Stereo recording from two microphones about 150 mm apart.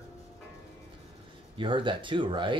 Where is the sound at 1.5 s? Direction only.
35° right (ahead or behind).